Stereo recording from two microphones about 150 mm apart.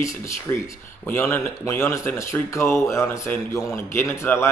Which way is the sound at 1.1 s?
15° left (ahead or behind).